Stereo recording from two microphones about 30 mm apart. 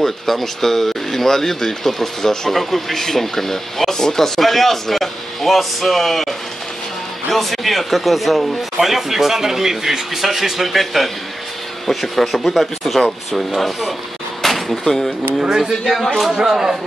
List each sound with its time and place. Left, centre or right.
0.0 s a man's voice: centre
14.4 s a sound: centre
14.9 s speech: centre
15.4 s speech: right